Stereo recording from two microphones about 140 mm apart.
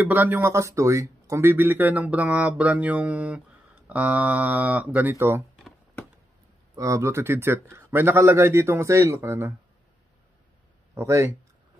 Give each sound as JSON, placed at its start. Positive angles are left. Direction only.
{"t": 0.0, "sound": "speech", "side_deg": -15}
{"t": 6.7, "sound": "speech", "side_deg": -25}
{"t": 11.0, "sound": "speech", "side_deg": -20}